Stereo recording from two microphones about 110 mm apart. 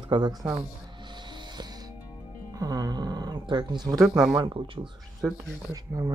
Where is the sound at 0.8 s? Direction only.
45° right (ahead or behind).